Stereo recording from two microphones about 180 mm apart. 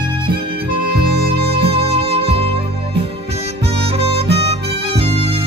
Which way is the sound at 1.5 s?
30° right (ahead or behind).